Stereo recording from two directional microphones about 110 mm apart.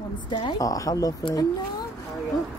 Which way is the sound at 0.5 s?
30° left (ahead or behind).